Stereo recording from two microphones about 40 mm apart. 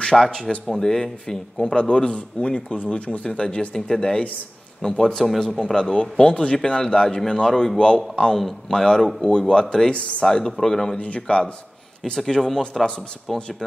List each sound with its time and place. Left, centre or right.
0.1 s a man's voice: centre; by 2.8 s left
3.3 s a man's voice: centre
5.4 s a man's voice: centre
8.4 s speech: centre
8.7 s a man's voice: centre
9.9 s speech: left
10.2 s a man's voice: centre
11.0 s a man's voice: left
12.3 s speech: centre